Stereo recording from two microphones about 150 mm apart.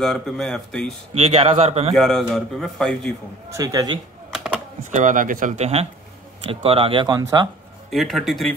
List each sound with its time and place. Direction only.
0.0 s a man's voice: centre (ahead or behind)
1.1 s speech: 40° right (ahead or behind)
2.0 s a man's voice: centre (ahead or behind)
3.4 s a man's voice: 20° right (ahead or behind)
4.3 s a sound: centre (ahead or behind)
4.9 s speech: 60° right (ahead or behind); by 7.4 s 25° right (ahead or behind)
7.9 s a man's voice: centre (ahead or behind)